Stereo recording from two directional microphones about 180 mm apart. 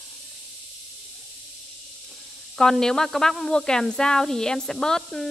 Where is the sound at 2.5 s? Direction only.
5° left (ahead or behind).